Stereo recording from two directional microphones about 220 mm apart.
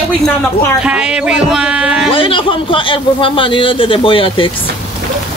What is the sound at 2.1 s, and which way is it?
A man's voice, 25° left (ahead or behind).